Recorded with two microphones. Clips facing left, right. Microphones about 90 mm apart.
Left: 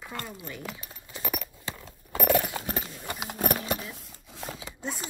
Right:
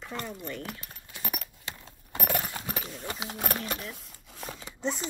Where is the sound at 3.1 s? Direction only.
55° left (ahead or behind).